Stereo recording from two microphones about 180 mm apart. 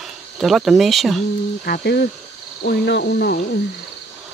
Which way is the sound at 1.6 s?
60° left (ahead or behind).